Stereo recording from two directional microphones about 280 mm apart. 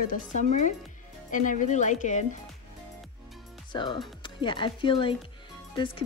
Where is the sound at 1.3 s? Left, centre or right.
Left.